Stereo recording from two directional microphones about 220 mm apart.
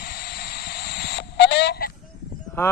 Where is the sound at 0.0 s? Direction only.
45° left (ahead or behind).